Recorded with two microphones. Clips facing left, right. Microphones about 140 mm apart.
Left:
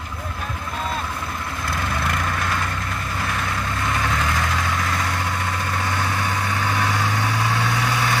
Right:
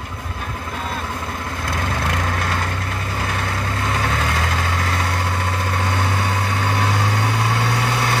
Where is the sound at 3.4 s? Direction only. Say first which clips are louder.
Right 1 dB; 60° right (ahead or behind).